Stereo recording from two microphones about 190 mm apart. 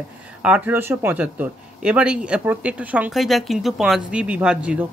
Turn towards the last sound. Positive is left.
turn(degrees=-5)  # may be behind; listen again after turning